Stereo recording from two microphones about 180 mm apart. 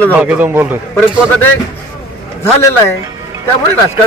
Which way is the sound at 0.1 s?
10° right (ahead or behind).